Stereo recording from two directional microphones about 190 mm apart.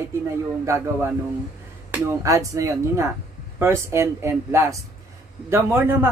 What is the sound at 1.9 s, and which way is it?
Speech, 15° right (ahead or behind).